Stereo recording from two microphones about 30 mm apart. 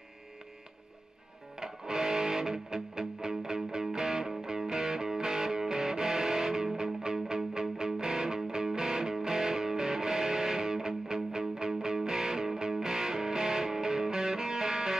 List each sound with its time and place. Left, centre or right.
1.6 s music: centre